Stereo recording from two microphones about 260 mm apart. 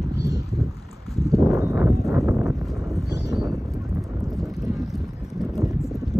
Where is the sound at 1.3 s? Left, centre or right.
Centre.